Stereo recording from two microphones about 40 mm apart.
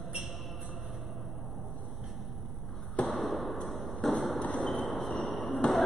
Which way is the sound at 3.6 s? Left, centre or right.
Centre.